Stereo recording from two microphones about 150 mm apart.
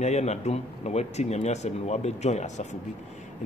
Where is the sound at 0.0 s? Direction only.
45° left (ahead or behind).